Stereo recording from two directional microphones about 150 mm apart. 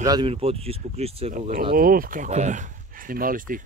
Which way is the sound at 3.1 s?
70° right (ahead or behind).